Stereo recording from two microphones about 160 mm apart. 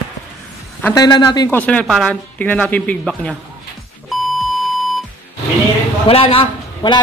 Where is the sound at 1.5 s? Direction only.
10° left (ahead or behind).